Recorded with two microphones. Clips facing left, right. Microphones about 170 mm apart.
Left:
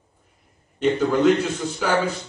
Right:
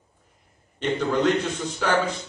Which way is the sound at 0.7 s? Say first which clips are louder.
Left 4 dB; 5° left (ahead or behind).